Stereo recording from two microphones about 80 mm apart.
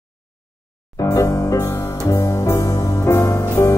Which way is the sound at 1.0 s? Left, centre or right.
Left.